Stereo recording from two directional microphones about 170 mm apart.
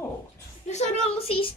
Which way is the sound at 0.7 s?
40° left (ahead or behind).